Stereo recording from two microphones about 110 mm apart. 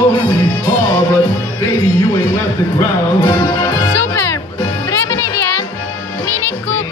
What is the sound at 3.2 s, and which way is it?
Music, 45° left (ahead or behind).